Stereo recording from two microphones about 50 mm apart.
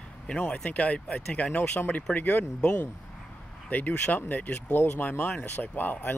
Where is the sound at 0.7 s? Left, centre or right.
Left.